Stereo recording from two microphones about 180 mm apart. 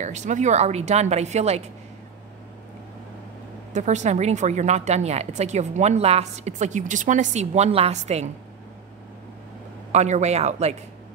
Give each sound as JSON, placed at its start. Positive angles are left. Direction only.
{"t": 0.0, "sound": "speech", "side_deg": -40}
{"t": 3.7, "sound": "speech", "side_deg": -40}
{"t": 9.9, "sound": "speech", "side_deg": -40}